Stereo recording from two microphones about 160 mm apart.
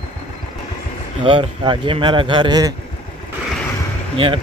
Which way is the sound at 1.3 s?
30° right (ahead or behind).